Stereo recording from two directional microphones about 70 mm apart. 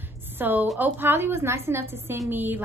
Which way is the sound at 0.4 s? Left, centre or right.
Right.